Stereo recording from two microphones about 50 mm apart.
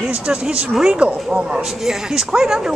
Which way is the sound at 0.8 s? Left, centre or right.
Right.